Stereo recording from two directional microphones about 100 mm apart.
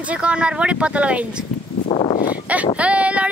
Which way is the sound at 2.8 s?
10° right (ahead or behind).